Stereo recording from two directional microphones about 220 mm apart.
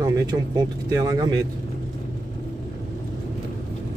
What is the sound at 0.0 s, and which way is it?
Speech, 15° right (ahead or behind).